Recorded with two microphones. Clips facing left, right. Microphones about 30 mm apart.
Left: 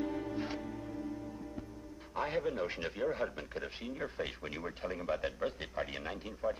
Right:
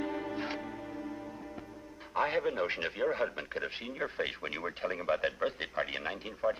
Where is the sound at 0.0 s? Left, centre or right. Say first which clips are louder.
Right 1 dB; right.